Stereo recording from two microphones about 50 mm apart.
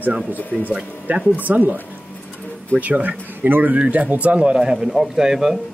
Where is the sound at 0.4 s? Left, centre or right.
Left.